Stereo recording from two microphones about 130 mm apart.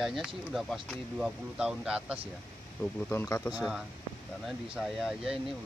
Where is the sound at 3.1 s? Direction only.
20° left (ahead or behind).